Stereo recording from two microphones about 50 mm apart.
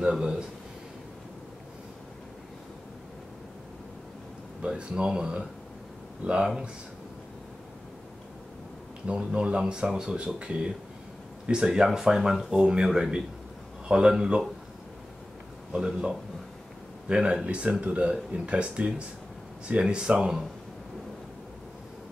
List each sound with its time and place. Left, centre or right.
0.0 s speech: centre
4.6 s speech: right
9.0 s speech: right
15.7 s speech: centre